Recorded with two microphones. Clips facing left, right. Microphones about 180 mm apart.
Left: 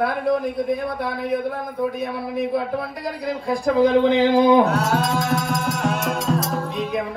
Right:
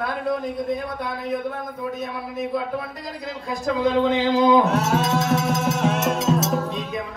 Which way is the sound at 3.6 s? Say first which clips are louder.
Left 4 dB; 55° left (ahead or behind).